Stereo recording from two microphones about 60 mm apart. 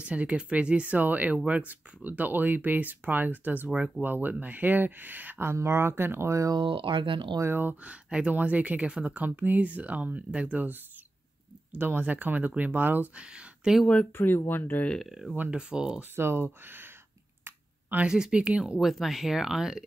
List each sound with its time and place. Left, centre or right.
0.0 s speech: right
7.4 s speech: right
7.8 s speech: centre
11.8 s speech: right
13.1 s speech: centre
14.1 s speech: left
15.0 s speech: centre
15.5 s speech: centre
16.2 s speech: right
17.5 s finger snapping: right
18.0 s speech: centre
18.8 s speech: centre